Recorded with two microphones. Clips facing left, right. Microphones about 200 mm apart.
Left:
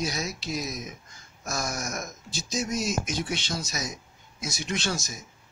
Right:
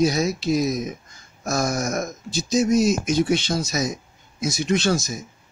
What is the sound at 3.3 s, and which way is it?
Speech, 45° right (ahead or behind).